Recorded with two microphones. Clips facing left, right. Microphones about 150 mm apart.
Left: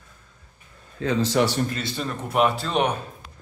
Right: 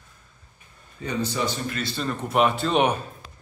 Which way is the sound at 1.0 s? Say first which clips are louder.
Left 6 dB; 90° left.